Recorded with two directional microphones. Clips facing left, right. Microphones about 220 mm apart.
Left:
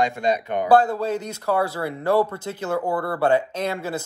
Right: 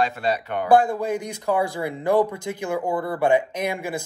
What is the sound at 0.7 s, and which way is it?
Speech, 10° right (ahead or behind).